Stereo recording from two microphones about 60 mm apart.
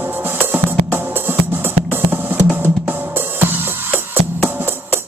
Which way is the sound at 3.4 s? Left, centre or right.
Right.